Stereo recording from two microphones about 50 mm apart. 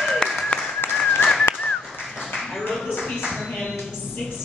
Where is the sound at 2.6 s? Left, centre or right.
Centre.